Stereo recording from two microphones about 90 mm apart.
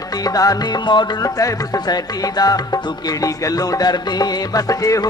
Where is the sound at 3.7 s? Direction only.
45° left (ahead or behind).